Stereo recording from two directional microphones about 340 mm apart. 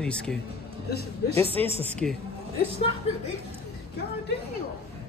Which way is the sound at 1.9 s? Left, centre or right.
Centre.